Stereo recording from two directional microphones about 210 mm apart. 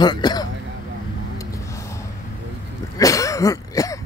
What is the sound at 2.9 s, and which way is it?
Cough, 15° left (ahead or behind).